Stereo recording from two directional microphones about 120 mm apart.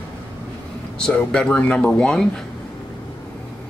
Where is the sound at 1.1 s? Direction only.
10° left (ahead or behind).